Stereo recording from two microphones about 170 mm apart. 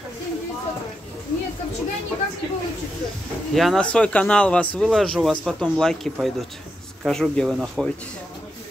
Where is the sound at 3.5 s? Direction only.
Centre (ahead or behind).